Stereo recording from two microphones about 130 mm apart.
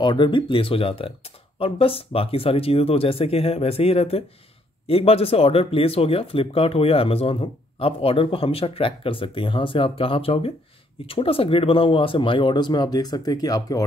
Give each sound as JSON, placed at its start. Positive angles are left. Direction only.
{"t": 0.0, "sound": "speech", "side_deg": 35}